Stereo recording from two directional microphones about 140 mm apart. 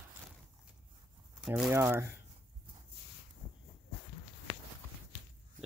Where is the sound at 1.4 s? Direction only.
5° right (ahead or behind).